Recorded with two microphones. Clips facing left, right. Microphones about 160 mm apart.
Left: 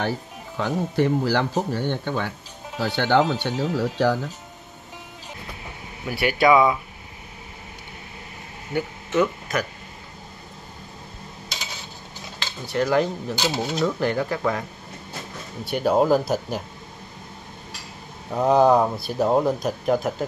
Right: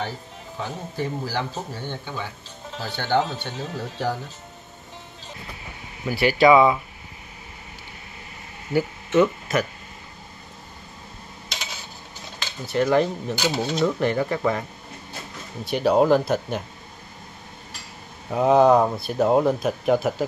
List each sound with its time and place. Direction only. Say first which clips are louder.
0.6 s speech: left 7 dB; 75° left (ahead or behind)
2.8 s speech: left 4 dB; 90° left
6.0 s speech: right 2 dB; centre (ahead or behind)
8.7 s speech: right 3 dB; 5° right (ahead or behind)
12.6 s speech: right 1 dB; centre (ahead or behind)
15.6 s speech: right 1 dB; centre (ahead or behind)
18.3 s speech: right 1 dB; centre (ahead or behind)